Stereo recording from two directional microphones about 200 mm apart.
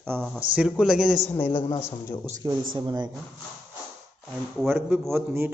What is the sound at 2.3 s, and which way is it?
Speech, 20° right (ahead or behind).